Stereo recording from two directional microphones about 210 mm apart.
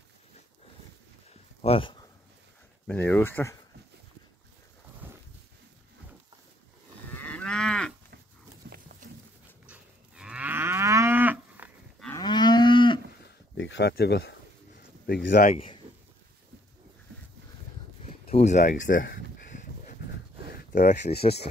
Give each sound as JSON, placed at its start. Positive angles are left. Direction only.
{"t": 1.6, "sound": "speech", "side_deg": 25}
{"t": 2.9, "sound": "speech", "side_deg": 10}
{"t": 5.0, "sound": "a sound", "side_deg": -10}
{"t": 7.1, "sound": "moo", "side_deg": 5}
{"t": 8.6, "sound": "a sound", "side_deg": -45}
{"t": 9.7, "sound": "livestock", "side_deg": -5}
{"t": 12.2, "sound": "moo", "side_deg": 20}
{"t": 13.2, "sound": "a sound", "side_deg": 60}
{"t": 15.5, "sound": "a man's voice", "side_deg": 25}
{"t": 18.0, "sound": "speech", "side_deg": 30}
{"t": 20.5, "sound": "speech", "side_deg": 40}